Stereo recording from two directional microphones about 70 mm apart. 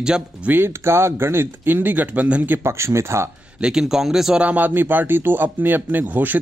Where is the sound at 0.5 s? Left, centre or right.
Right.